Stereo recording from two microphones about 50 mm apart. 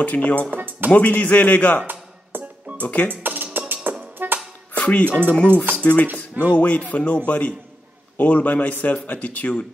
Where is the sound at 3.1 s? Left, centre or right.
Right.